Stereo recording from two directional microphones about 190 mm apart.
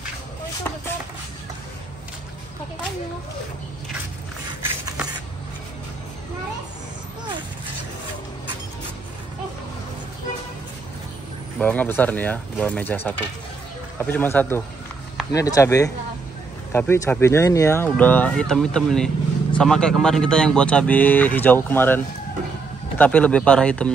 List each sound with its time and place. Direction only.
11.5 s a man's voice: 10° left (ahead or behind)